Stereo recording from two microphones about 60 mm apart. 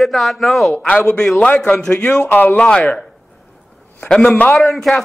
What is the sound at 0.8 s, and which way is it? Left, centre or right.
Speech, left.